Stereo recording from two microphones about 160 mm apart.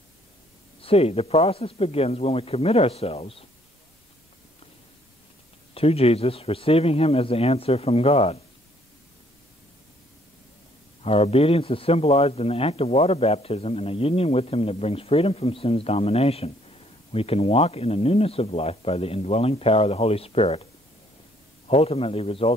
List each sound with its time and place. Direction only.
0.7 s a man's voice: 35° left (ahead or behind)
5.8 s a man's voice: 40° left (ahead or behind)
11.0 s a man's voice: 40° left (ahead or behind)
21.6 s a man's voice: 40° left (ahead or behind)